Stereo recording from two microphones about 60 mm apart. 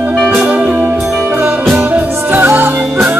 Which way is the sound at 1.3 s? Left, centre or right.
Right.